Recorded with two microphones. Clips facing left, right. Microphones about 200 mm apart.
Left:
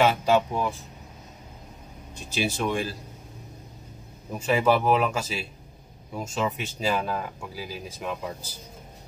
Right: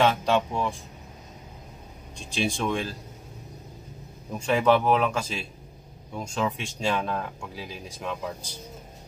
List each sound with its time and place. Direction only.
0.0 s speech: 5° left (ahead or behind)
2.1 s speech: 5° left (ahead or behind)
4.3 s speech: 5° left (ahead or behind)